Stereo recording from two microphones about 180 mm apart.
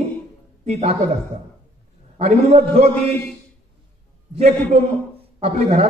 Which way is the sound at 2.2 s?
35° right (ahead or behind).